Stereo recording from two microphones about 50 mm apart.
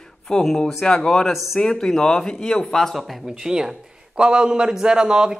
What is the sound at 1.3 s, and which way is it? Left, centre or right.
Speech, centre.